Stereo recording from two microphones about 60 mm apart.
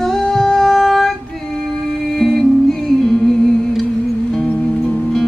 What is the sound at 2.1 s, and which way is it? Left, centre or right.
Music, centre.